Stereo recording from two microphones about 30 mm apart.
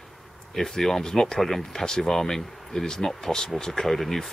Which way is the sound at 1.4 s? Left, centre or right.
Centre.